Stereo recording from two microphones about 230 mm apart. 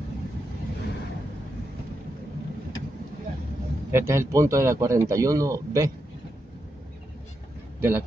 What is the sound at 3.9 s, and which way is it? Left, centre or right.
A man's voice, centre.